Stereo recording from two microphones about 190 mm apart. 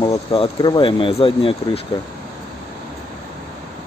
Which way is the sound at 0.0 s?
25° left (ahead or behind).